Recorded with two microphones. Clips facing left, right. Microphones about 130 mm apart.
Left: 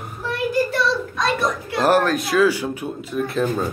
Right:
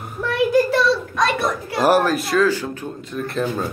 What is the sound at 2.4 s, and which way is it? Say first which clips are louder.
Speech: left 1 dB; 10° left (ahead or behind).